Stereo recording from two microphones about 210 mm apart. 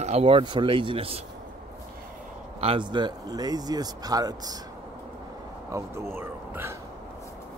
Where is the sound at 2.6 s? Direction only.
25° right (ahead or behind).